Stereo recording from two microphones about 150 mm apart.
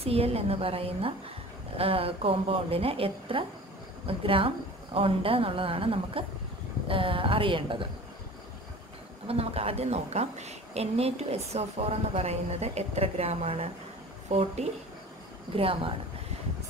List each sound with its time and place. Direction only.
0.0 s a woman's voice: 40° right (ahead or behind)
9.3 s a woman's voice: 40° right (ahead or behind)